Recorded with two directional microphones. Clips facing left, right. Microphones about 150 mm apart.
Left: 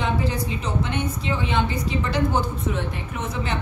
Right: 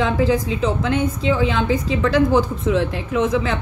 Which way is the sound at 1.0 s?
90° right.